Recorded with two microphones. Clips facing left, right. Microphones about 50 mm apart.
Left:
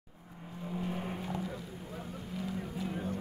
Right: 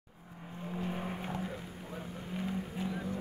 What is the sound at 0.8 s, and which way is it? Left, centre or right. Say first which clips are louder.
Vehicle: even; centre.